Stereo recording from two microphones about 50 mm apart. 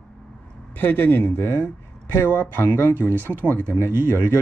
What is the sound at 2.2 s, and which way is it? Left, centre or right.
Mantra, left.